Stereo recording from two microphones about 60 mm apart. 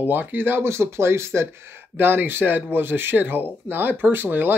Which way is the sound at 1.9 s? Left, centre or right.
Right.